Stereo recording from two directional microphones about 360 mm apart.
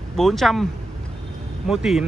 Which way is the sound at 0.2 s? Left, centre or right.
Centre.